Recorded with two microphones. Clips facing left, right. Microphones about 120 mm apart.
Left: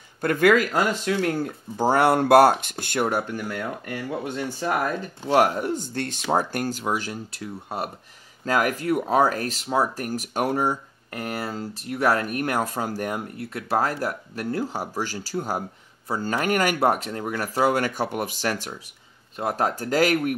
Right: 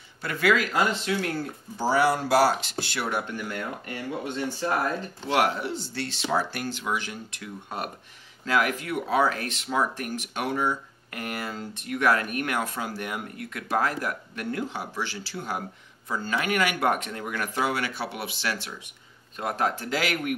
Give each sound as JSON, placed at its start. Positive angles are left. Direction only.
{"t": 0.2, "sound": "speech", "side_deg": 50}
{"t": 5.3, "sound": "speech", "side_deg": 45}
{"t": 8.5, "sound": "speech", "side_deg": 40}